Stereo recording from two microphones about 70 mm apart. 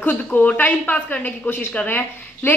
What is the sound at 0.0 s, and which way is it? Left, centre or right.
A woman's voice, left.